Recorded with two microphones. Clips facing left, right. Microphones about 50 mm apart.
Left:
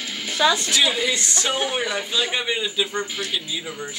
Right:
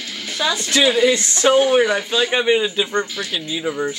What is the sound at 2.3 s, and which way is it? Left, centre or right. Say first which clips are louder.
Speech: right 8 dB; right.